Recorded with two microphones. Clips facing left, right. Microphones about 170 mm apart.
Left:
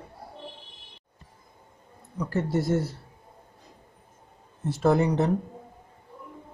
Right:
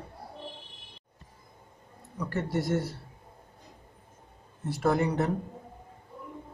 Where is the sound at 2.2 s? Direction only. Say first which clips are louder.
Left 4 dB; 25° left (ahead or behind).